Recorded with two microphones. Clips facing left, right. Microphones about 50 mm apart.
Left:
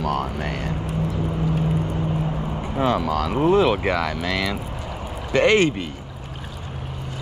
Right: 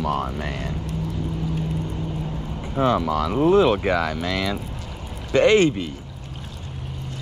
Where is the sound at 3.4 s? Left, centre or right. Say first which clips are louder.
Right 1 dB; centre.